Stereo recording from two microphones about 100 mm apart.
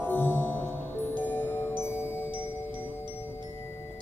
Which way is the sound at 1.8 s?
25° left (ahead or behind).